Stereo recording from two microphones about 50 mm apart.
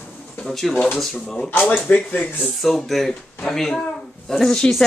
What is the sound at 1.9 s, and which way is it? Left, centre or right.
Speech, left.